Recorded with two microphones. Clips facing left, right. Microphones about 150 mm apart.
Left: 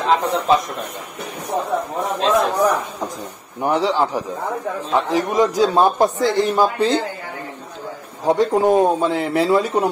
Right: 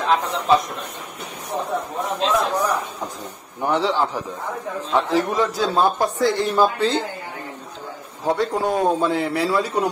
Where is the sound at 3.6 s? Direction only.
10° left (ahead or behind).